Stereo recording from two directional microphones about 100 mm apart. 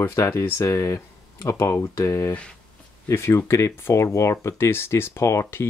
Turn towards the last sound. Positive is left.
turn(degrees=25)  # may be behind; listen again after turning